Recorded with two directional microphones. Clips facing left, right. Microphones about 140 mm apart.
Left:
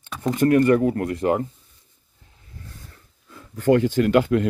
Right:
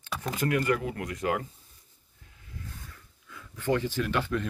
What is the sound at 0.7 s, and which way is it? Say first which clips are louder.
Speech: left 10 dB; 40° left (ahead or behind).